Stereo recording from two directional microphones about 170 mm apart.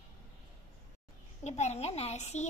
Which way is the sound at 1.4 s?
40° left (ahead or behind).